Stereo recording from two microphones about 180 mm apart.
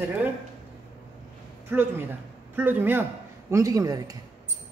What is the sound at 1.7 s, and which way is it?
A man's voice, 10° right (ahead or behind).